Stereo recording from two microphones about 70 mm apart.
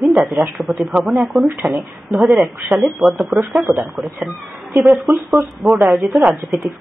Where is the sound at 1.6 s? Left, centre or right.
Right.